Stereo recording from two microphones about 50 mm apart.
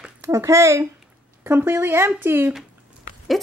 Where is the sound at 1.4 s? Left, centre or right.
Right.